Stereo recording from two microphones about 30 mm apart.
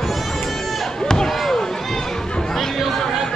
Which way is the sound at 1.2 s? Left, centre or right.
Centre.